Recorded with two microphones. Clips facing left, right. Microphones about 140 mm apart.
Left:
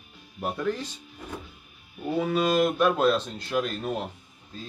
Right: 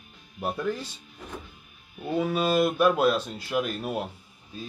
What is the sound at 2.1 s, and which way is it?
Speech, 5° right (ahead or behind).